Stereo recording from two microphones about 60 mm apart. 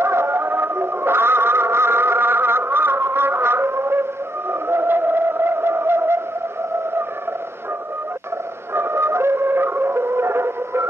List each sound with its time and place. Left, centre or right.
0.0 s music: right
4.5 s a sound: right
8.7 s music: right